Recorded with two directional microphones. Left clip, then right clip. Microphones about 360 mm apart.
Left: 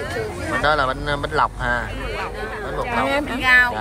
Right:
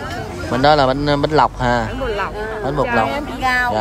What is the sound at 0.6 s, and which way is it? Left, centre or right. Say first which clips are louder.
A man's voice: right 7 dB; centre.